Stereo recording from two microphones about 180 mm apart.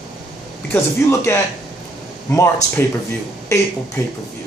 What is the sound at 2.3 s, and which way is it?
Speech, 15° left (ahead or behind).